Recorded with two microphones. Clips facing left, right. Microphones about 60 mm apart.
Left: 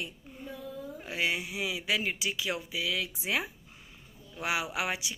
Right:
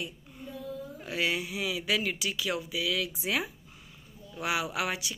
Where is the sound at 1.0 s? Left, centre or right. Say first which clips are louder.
Right 1 dB; left.